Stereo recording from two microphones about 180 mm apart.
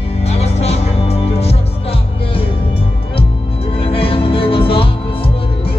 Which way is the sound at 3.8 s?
30° left (ahead or behind).